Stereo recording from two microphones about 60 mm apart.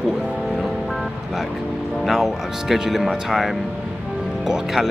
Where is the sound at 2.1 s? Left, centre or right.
Centre.